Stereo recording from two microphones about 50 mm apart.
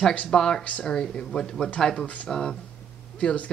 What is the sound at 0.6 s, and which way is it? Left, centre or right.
Speech, left.